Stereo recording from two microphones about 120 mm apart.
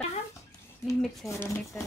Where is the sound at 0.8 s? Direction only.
Centre (ahead or behind).